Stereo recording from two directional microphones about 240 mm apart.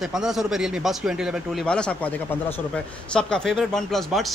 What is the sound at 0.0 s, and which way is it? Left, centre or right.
Speech, centre.